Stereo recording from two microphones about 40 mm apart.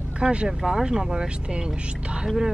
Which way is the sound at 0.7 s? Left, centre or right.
Centre.